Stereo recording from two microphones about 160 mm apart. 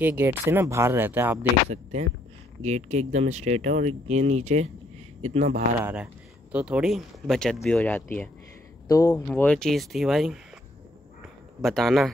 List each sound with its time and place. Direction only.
0.0 s speech: 15° right (ahead or behind)
1.7 s speech: 45° right (ahead or behind)
5.8 s speech: 10° right (ahead or behind); by 8.3 s 10° left (ahead or behind)
8.8 s speech: 20° left (ahead or behind)
9.3 s speech: 5° left (ahead or behind)
11.6 s speech: centre (ahead or behind)